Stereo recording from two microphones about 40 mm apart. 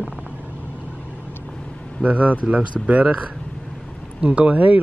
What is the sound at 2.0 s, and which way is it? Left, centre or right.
Speech, right.